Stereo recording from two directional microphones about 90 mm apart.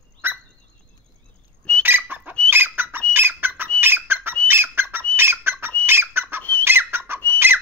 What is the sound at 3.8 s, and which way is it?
Bird, 25° right (ahead or behind).